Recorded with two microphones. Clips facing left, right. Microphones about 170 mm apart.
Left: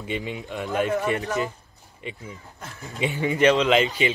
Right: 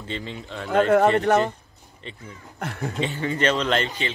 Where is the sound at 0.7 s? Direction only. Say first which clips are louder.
Right 7 dB; 70° right (ahead or behind).